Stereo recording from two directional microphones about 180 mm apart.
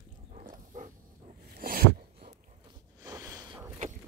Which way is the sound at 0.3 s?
45° right (ahead or behind).